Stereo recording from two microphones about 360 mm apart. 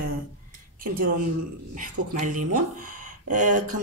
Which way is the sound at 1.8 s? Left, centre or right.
Right.